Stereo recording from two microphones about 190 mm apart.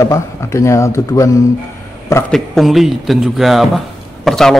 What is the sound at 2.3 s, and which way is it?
A man's voice, centre (ahead or behind).